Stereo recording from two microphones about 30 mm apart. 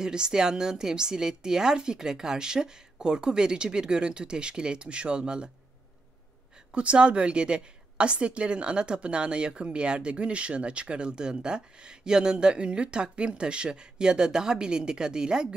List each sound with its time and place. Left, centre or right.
0.0 s a woman's voice: right
6.7 s a woman's voice: right